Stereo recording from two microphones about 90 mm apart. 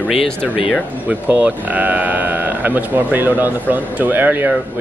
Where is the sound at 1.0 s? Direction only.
15° right (ahead or behind).